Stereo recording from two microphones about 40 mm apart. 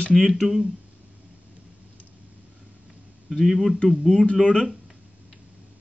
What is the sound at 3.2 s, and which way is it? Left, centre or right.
A man's voice, centre.